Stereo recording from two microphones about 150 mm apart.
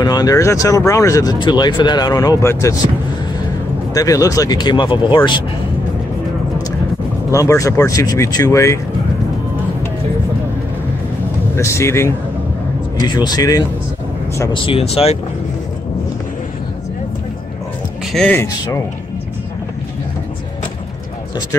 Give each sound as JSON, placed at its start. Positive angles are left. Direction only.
{"t": 0.0, "sound": "speech", "side_deg": 25}
{"t": 3.9, "sound": "speech", "side_deg": 25}
{"t": 7.3, "sound": "speech", "side_deg": 20}
{"t": 11.5, "sound": "speech", "side_deg": 20}
{"t": 13.0, "sound": "speech", "side_deg": 30}
{"t": 18.1, "sound": "speech", "side_deg": 10}